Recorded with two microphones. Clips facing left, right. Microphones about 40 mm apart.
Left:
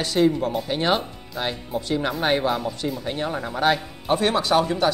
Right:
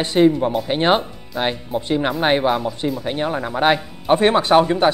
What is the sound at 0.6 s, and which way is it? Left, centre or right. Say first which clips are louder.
Speech: right 6 dB; right.